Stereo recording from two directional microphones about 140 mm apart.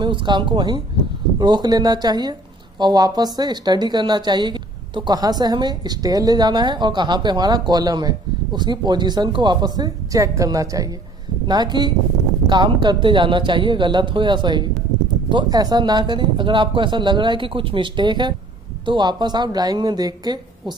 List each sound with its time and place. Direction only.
0.0 s speech: 35° right (ahead or behind)